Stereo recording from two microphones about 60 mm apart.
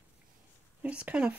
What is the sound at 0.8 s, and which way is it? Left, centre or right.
Speech, right.